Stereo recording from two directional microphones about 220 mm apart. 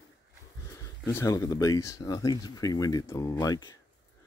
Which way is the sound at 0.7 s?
15° left (ahead or behind).